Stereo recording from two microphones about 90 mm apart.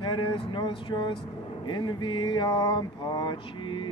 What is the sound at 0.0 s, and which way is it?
Mantra, 65° left (ahead or behind).